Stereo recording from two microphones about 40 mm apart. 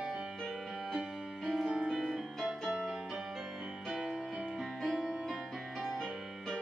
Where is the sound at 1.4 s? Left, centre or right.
Centre.